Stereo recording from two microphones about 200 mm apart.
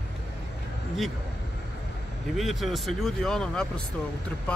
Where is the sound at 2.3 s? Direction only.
Centre (ahead or behind).